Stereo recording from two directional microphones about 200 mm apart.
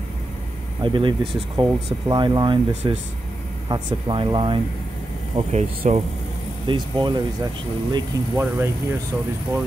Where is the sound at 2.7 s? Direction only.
35° right (ahead or behind).